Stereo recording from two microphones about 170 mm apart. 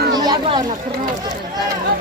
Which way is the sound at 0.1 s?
25° right (ahead or behind).